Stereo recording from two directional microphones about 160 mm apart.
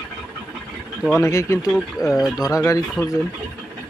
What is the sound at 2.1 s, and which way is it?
Speech, centre (ahead or behind).